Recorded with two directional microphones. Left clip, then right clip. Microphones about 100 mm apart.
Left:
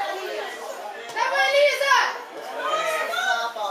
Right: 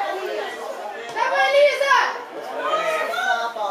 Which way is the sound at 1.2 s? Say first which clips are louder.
Right 3 dB; 15° right (ahead or behind).